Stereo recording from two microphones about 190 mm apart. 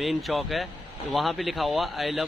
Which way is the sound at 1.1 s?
Centre (ahead or behind).